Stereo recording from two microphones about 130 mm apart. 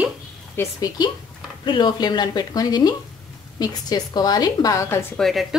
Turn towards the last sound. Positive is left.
turn(degrees=0)  # may be behind; listen again after turning